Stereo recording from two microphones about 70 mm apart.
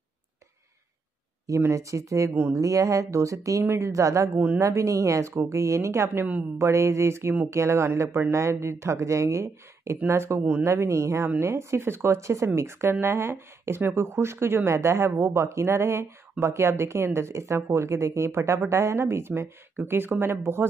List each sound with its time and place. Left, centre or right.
1.7 s speech: right